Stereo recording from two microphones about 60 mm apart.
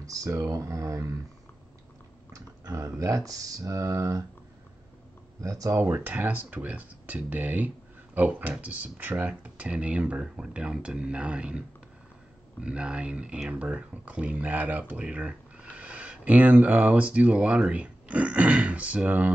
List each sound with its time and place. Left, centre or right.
0.0 s speech: right
2.3 s speech: right
5.4 s speech: right
5.9 s speech: right
10.2 s speech: centre; by 19.3 s right